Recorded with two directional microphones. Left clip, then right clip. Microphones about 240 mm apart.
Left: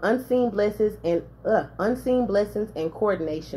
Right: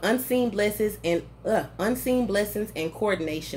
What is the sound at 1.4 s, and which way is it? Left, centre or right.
Speech, right.